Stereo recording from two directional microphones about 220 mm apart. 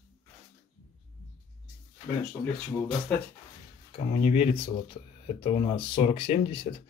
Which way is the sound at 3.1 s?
5° left (ahead or behind).